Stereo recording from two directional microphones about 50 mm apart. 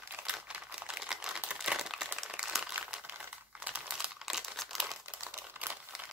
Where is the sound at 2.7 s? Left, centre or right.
Right.